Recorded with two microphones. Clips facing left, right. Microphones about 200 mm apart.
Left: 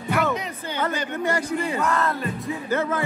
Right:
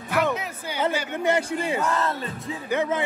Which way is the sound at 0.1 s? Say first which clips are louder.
Even; 5° right (ahead or behind).